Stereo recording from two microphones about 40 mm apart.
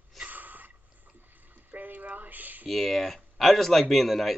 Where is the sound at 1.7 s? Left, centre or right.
Right.